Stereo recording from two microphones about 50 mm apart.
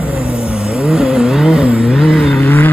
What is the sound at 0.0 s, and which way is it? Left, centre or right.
Vehicle, right.